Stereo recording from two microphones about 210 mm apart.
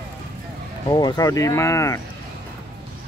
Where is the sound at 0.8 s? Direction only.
20° left (ahead or behind).